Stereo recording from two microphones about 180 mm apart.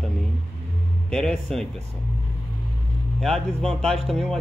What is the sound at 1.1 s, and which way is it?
Speech, centre (ahead or behind).